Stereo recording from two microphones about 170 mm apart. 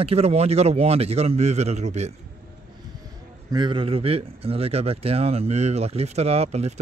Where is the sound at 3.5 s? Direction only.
25° right (ahead or behind).